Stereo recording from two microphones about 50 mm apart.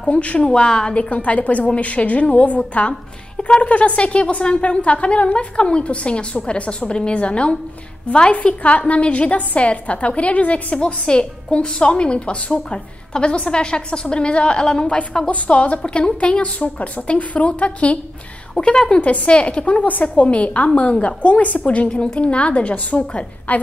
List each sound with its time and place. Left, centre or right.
0.0 s a woman's voice: left
0.5 s a woman's voice: centre
1.1 s a woman's voice: left